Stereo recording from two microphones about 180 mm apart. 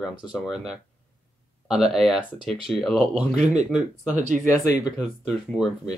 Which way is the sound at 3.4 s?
40° right (ahead or behind).